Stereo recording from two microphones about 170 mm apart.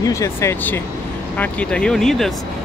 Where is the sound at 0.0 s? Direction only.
20° left (ahead or behind).